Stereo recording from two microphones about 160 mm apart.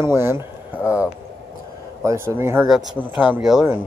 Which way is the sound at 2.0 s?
15° right (ahead or behind).